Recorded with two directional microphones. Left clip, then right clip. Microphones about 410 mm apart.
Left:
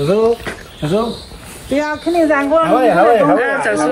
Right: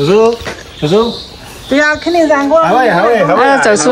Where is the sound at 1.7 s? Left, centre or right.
Right.